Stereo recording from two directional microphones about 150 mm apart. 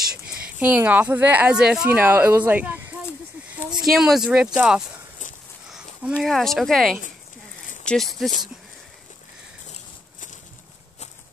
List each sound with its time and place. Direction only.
0.3 s speech: 10° right (ahead or behind)
5.7 s a sound: 5° right (ahead or behind)
6.2 s speech: centre (ahead or behind)